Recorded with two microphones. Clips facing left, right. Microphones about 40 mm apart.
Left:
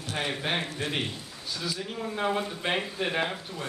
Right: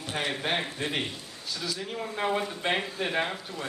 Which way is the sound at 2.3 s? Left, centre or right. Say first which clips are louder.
Right 1 dB; centre.